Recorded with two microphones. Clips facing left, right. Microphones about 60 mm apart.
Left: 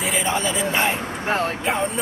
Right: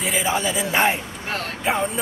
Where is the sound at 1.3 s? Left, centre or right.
Left.